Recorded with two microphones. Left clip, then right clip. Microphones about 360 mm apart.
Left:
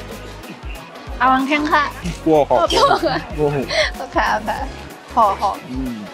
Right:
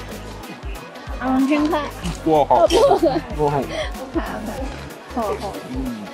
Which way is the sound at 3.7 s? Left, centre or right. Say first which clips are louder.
Left 8 dB; left.